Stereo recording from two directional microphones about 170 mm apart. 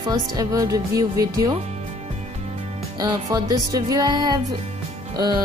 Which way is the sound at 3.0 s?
25° right (ahead or behind).